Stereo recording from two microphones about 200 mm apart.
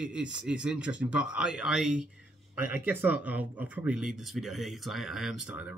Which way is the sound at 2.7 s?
50° left (ahead or behind).